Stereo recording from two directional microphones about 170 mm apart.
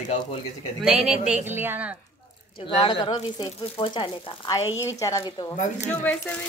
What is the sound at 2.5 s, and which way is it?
Speech, 30° left (ahead or behind).